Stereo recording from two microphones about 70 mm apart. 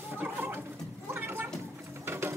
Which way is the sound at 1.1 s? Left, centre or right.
Right.